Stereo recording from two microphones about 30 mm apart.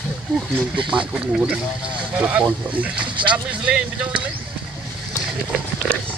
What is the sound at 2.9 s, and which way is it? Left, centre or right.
Speech, right.